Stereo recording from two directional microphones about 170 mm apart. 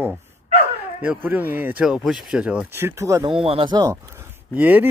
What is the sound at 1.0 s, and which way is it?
Speech, 10° right (ahead or behind).